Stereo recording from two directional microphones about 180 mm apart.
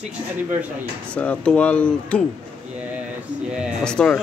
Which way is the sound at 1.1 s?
5° left (ahead or behind).